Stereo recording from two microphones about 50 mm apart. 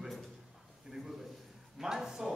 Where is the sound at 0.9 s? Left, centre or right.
Centre.